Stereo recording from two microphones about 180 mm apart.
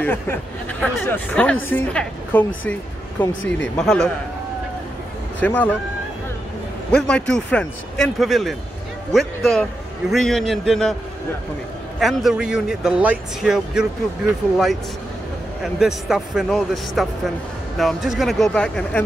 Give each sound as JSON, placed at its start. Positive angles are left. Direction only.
{"t": 0.0, "sound": "a woman's voice", "side_deg": 10}
{"t": 5.4, "sound": "a woman's voice", "side_deg": 10}
{"t": 6.9, "sound": "a man's voice", "side_deg": 5}
{"t": 12.0, "sound": "a man's voice", "side_deg": 0}
{"t": 15.6, "sound": "a man's voice", "side_deg": -5}